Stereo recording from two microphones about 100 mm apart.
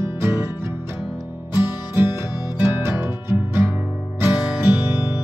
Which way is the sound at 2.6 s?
25° right (ahead or behind).